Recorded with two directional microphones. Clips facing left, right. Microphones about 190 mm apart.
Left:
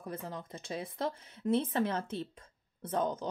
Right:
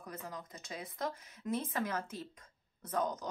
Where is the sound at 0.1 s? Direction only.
30° left (ahead or behind).